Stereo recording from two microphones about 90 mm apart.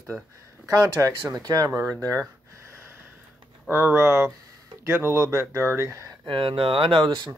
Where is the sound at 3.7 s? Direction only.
25° right (ahead or behind).